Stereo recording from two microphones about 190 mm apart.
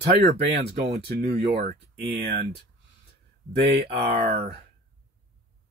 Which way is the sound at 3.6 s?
35° right (ahead or behind).